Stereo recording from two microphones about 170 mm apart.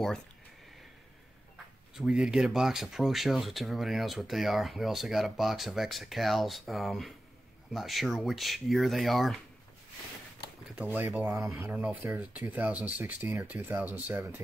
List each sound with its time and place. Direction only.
2.0 s speech: 5° right (ahead or behind)
10.8 s speech: 10° right (ahead or behind)